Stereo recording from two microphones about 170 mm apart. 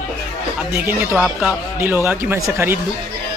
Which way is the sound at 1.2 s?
Centre (ahead or behind).